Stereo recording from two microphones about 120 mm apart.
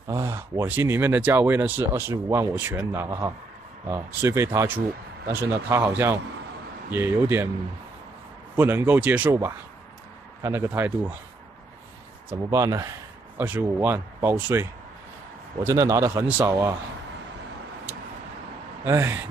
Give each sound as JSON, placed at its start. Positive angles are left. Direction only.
{"t": 0.1, "sound": "speech", "side_deg": -25}
{"t": 8.5, "sound": "speech", "side_deg": -20}
{"t": 10.4, "sound": "speech", "side_deg": -20}
{"t": 12.4, "sound": "speech", "side_deg": -30}
{"t": 13.4, "sound": "speech", "side_deg": -15}
{"t": 18.9, "sound": "speech", "side_deg": -20}